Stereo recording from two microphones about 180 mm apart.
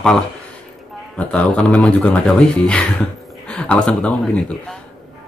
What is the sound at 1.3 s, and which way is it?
Speech, 5° left (ahead or behind).